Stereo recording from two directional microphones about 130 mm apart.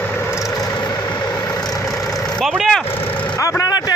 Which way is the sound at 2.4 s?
Centre (ahead or behind).